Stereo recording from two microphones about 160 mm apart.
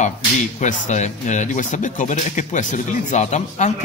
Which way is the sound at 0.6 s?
50° left (ahead or behind).